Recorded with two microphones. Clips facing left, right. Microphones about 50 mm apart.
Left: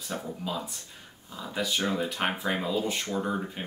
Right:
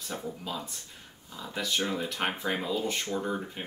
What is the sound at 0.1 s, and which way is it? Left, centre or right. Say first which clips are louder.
Speech: left 3 dB; centre.